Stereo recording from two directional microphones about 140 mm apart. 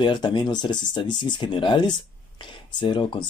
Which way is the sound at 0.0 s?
35° left (ahead or behind).